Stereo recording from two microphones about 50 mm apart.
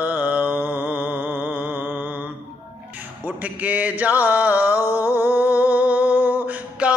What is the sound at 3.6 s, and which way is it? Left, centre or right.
Mantra, right.